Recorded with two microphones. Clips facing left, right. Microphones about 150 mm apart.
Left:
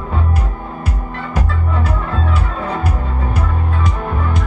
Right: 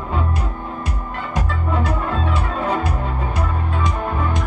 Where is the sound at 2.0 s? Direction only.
5° right (ahead or behind).